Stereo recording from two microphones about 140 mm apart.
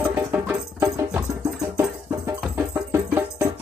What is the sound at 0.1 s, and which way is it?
Music, 10° right (ahead or behind).